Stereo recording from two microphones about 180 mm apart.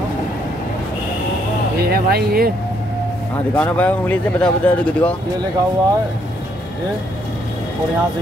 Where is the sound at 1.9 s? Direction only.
60° right (ahead or behind).